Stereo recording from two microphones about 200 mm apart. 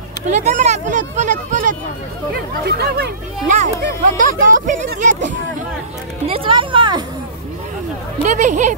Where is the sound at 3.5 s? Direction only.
40° right (ahead or behind).